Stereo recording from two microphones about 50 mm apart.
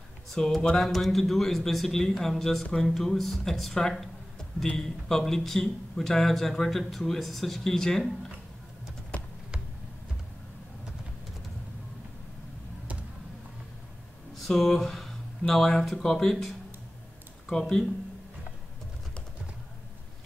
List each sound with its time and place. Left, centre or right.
0.3 s speech: centre
3.7 s a sound: centre
4.7 s speech: centre
9.1 s typing: left
14.3 s speech: centre
17.5 s speech: centre